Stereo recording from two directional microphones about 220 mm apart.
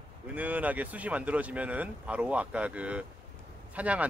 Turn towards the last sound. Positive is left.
turn(degrees=-5)  # may be behind; listen again after turning